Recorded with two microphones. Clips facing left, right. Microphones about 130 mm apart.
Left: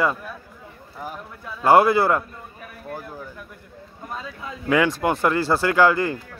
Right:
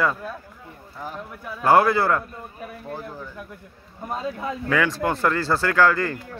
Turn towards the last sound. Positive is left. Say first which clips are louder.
# left 2 dB
turn(degrees=15)  # may be behind; listen again after turning